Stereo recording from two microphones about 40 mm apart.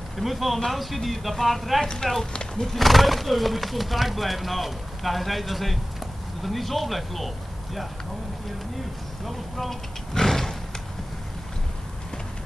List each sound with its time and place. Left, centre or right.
0.2 s speech: centre
2.3 s speech: centre
9.2 s speech: centre
10.1 s a sound: centre